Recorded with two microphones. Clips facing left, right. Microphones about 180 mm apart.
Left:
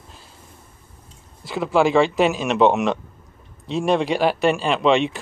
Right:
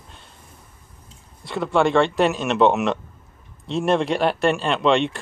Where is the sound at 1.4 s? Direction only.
Centre (ahead or behind).